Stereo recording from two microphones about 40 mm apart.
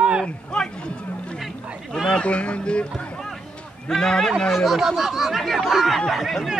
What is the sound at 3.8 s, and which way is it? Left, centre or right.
Speech, centre.